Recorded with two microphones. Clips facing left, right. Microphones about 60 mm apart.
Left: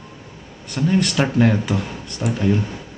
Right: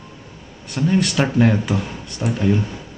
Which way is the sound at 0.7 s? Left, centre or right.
Centre.